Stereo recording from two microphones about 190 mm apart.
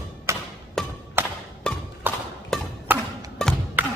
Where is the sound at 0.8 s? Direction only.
Centre (ahead or behind).